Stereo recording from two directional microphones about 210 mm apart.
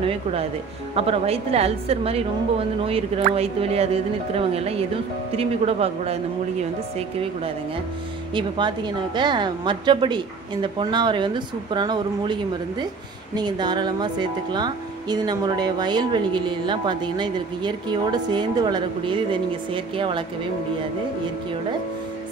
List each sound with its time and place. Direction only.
0.0 s speech: 25° right (ahead or behind)
8.4 s speech: 20° right (ahead or behind)